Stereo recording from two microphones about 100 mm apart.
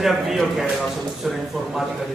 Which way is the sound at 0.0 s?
Centre (ahead or behind).